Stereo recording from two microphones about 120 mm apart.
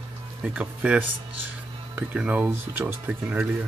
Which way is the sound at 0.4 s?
10° right (ahead or behind).